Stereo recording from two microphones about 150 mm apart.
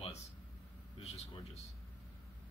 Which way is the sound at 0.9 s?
45° left (ahead or behind).